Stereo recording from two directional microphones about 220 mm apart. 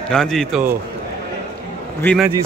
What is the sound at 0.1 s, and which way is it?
Speech, centre (ahead or behind).